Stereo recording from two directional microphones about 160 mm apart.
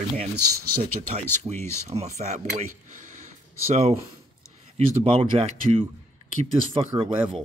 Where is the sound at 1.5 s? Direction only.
35° right (ahead or behind).